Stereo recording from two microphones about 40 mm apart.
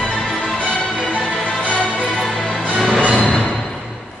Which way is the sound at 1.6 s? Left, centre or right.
Left.